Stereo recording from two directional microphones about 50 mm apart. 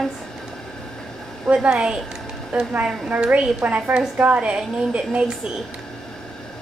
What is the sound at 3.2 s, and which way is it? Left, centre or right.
A woman's voice, right.